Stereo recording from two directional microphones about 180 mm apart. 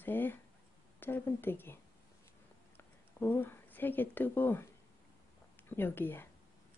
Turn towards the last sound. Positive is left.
turn(degrees=10)  # may be behind; listen again after turning